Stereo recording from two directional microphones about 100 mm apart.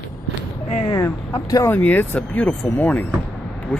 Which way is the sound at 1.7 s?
15° left (ahead or behind).